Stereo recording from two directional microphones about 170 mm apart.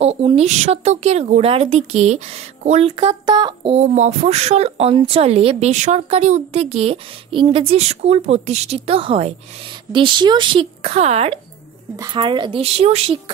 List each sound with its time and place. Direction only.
0.0 s a woman's voice: 35° right (ahead or behind)
12.0 s speech: 30° right (ahead or behind)